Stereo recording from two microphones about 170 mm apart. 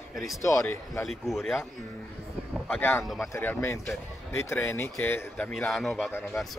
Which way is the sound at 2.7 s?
10° left (ahead or behind).